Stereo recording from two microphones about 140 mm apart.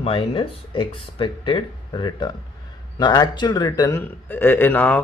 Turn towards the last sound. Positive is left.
turn(degrees=15)  # may be behind; listen again after turning